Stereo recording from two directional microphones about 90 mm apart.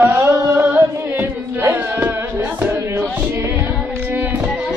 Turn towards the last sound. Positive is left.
turn(degrees=-20)  # may be behind; listen again after turning